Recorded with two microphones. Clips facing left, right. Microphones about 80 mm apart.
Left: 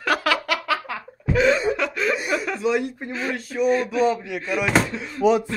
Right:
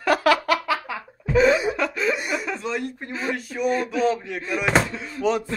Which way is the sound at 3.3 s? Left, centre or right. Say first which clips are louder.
Left 3 dB; centre.